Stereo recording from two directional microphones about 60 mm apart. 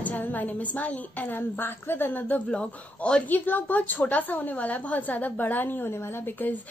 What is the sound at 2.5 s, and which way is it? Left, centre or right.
Speech, centre.